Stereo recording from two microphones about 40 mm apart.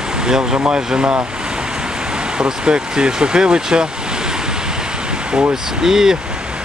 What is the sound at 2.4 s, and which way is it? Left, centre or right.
Speech, right.